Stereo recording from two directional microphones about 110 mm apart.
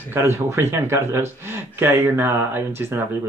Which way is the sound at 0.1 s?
20° right (ahead or behind).